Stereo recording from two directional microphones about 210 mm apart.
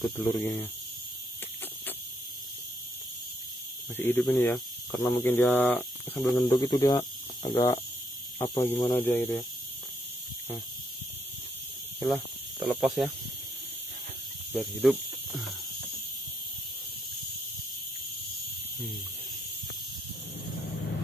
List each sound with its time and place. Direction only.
0.0 s speech: 10° left (ahead or behind)
3.9 s speech: 10° left (ahead or behind)
6.5 s speech: 20° left (ahead or behind)
12.6 s speech: centre (ahead or behind)
14.5 s speech: centre (ahead or behind)